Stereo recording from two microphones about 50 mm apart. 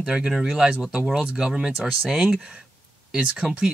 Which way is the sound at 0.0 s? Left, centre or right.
Centre.